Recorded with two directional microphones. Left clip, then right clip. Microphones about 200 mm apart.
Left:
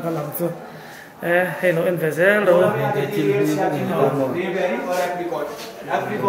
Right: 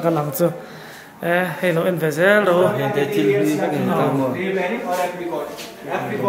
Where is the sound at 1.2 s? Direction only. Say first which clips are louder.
Left 1 dB; 25° right (ahead or behind).